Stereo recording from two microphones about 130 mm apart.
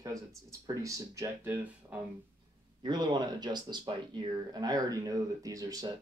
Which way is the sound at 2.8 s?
35° right (ahead or behind).